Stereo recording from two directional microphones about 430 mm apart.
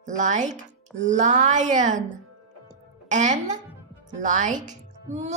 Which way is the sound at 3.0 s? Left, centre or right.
Centre.